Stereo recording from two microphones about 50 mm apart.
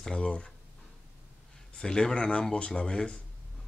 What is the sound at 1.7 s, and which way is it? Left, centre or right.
Speech, centre.